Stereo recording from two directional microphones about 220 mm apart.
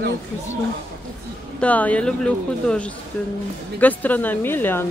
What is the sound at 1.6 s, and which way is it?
Speech, 5° left (ahead or behind).